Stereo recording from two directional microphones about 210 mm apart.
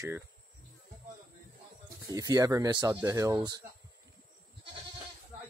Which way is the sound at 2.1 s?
15° right (ahead or behind).